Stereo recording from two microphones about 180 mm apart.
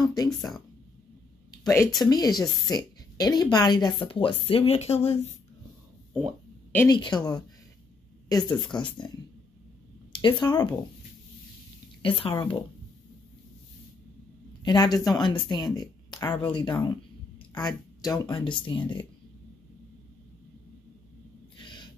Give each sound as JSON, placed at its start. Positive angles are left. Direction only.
{"t": 0.0, "sound": "a sound", "side_deg": 20}
{"t": 1.6, "sound": "a woman's voice", "side_deg": 15}
{"t": 6.1, "sound": "a sound", "side_deg": 5}
{"t": 6.9, "sound": "a woman's voice", "side_deg": 25}
{"t": 10.1, "sound": "a woman's voice", "side_deg": 25}
{"t": 12.0, "sound": "a woman's voice", "side_deg": 30}
{"t": 14.6, "sound": "a woman's voice", "side_deg": 25}
{"t": 21.6, "sound": "snort", "side_deg": 25}